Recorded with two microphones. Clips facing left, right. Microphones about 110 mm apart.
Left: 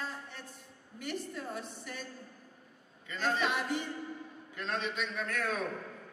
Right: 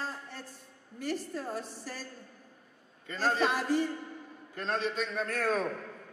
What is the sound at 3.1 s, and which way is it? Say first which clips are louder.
A man's voice: right 3 dB; 35° right (ahead or behind).